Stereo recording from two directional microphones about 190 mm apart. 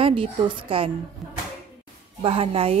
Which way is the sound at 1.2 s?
Centre (ahead or behind).